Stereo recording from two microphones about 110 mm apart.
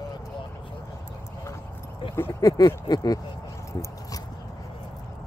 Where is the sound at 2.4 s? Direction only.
35° left (ahead or behind).